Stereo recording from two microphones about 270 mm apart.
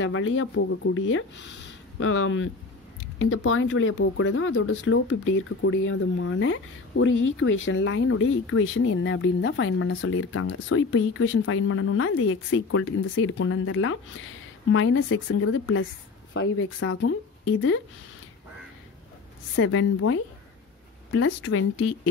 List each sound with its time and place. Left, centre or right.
0.0 s speech: left
19.5 s speech: left